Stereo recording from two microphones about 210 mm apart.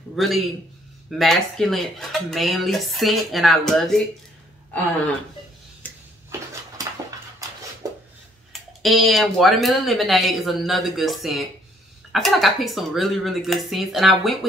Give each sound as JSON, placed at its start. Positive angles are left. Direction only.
{"t": 0.1, "sound": "a man's voice", "side_deg": 0}
{"t": 7.8, "sound": "a sound", "side_deg": -15}
{"t": 8.5, "sound": "speech", "side_deg": 0}